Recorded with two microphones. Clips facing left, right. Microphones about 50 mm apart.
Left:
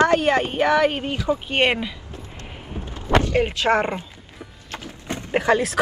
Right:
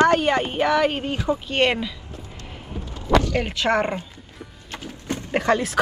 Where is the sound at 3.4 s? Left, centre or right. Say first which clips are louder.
Left 1 dB; centre.